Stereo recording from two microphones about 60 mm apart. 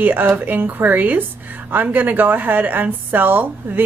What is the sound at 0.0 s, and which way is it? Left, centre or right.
A woman's voice, right.